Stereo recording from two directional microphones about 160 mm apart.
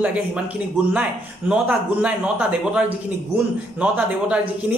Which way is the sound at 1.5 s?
5° right (ahead or behind).